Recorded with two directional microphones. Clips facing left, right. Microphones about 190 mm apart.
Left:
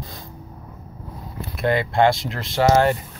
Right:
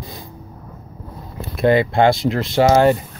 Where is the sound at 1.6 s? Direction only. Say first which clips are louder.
Right 4 dB; 25° right (ahead or behind).